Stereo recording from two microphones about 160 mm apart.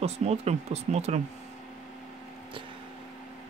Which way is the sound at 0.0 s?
40° right (ahead or behind).